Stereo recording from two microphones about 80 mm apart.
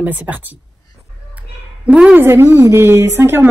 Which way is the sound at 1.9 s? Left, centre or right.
Centre.